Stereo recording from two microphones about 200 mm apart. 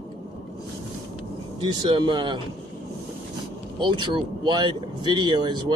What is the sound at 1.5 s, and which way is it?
Speech, 25° right (ahead or behind).